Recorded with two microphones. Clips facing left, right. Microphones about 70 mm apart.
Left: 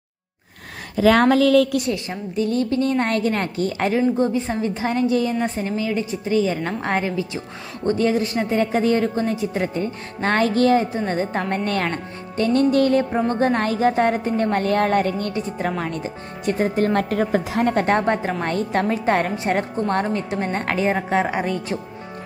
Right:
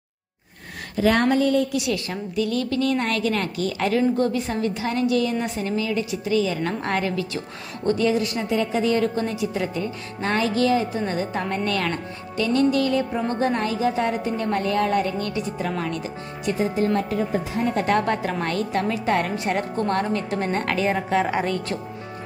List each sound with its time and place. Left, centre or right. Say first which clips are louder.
1.2 s a woman's voice: left 5 dB; left
2.0 s a woman's voice: left 2 dB; left
4.2 s a woman's voice: left 2 dB; left
8.1 s a woman's voice: left 2 dB; left
17.7 s a woman's voice: even; left
21.3 s speech: even; centre